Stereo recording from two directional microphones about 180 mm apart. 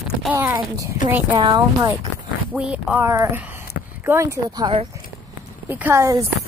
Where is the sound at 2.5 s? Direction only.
5° right (ahead or behind); by 4.8 s 25° right (ahead or behind).